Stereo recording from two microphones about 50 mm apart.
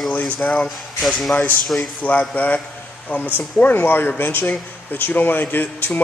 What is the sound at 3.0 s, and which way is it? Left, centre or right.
Speech, left.